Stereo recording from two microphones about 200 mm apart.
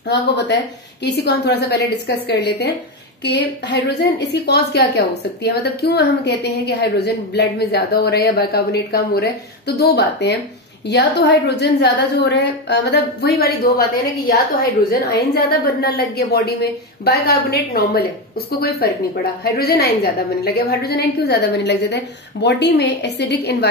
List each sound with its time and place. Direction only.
0.1 s a woman's voice: 60° left (ahead or behind)
19.4 s a woman's voice: 50° left (ahead or behind)